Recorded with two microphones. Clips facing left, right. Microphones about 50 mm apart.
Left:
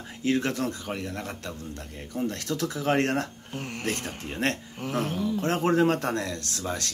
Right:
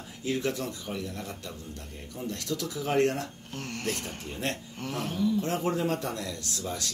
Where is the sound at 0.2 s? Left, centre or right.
Left.